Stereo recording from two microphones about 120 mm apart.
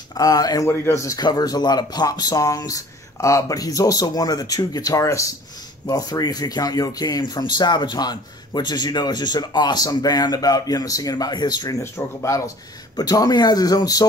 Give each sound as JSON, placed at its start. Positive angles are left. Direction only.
{"t": 0.1, "sound": "speech", "side_deg": 30}